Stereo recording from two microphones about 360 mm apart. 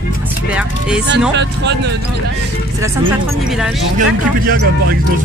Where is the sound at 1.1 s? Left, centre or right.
Right.